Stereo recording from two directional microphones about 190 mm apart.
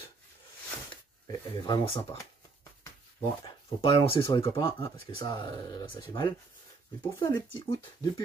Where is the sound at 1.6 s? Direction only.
25° left (ahead or behind).